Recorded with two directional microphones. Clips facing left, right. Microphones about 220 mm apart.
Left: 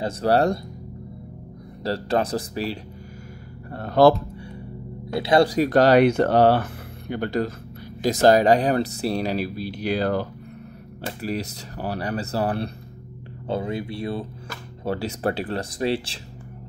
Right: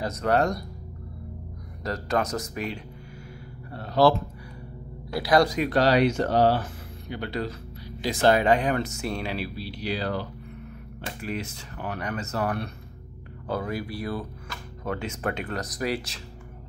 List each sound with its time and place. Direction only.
0.0 s speech: 30° left (ahead or behind)
1.8 s speech: 30° left (ahead or behind)
3.7 s a sound: 50° left (ahead or behind)
5.1 s speech: 25° left (ahead or behind); by 10.2 s 50° left (ahead or behind)
11.0 s speech: 35° left (ahead or behind)